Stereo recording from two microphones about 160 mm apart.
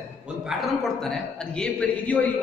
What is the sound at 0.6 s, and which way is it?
A man's voice, centre (ahead or behind).